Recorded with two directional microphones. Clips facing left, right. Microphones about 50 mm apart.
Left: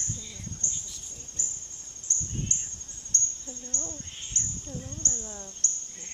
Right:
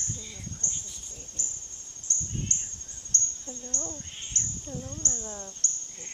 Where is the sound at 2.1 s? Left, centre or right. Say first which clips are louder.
Even; left.